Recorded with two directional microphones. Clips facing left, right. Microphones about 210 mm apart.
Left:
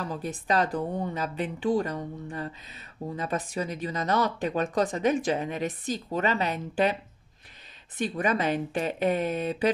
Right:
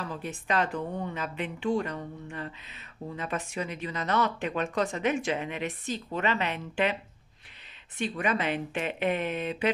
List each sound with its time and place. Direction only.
0.0 s speech: 35° left (ahead or behind)
8.0 s speech: 40° left (ahead or behind)